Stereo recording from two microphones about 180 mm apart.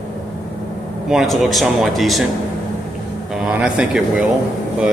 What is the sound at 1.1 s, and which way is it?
Speech, centre (ahead or behind).